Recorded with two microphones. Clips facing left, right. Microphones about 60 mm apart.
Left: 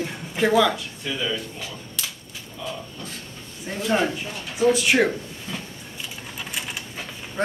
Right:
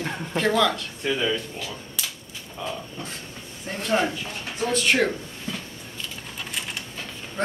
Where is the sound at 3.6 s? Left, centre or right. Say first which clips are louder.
Left 1 dB; centre.